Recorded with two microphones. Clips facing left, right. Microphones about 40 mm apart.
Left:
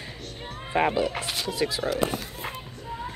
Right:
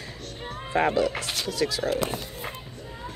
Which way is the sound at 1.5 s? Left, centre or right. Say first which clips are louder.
Right 1 dB; left.